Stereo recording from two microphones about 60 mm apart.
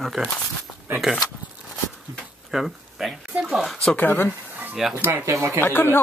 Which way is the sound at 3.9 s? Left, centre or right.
Left.